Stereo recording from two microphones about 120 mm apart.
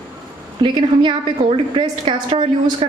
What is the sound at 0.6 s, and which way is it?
A woman's voice, 40° right (ahead or behind).